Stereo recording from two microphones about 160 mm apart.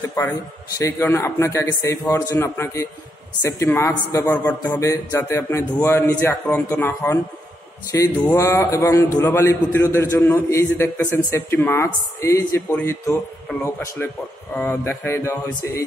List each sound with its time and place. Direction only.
0.7 s a man's voice: 15° left (ahead or behind)